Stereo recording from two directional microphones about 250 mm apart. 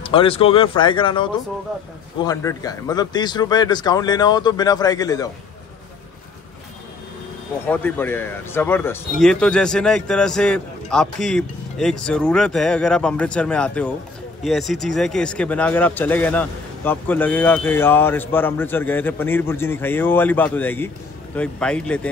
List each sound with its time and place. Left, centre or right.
0.0 s speech: left
2.2 s speech: centre
7.6 s speech: centre